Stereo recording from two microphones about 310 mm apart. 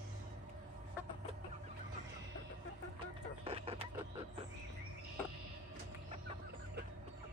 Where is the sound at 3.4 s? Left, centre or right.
Centre.